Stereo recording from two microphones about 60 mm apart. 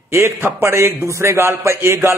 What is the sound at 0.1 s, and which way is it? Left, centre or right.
A man's voice, right.